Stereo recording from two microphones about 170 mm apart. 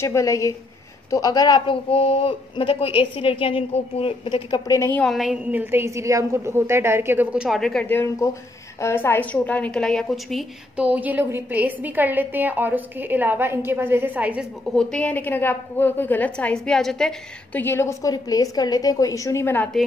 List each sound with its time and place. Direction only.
0.0 s a woman's voice: 15° left (ahead or behind)
5.0 s a woman's voice: centre (ahead or behind)
14.7 s a woman's voice: 5° left (ahead or behind)
17.6 s a woman's voice: 15° left (ahead or behind)